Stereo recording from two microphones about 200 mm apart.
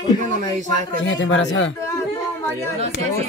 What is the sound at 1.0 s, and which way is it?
Speech, 65° left (ahead or behind).